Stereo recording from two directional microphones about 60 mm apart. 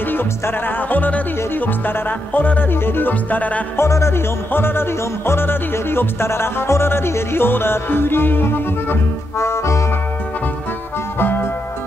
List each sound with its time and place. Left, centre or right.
0.1 s music: left
2.7 s music: left
3.7 s music: left
4.5 s music: left
9.4 s music: left
11.1 s music: left